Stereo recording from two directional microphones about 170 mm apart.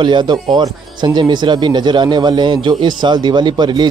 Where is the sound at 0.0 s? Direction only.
25° right (ahead or behind).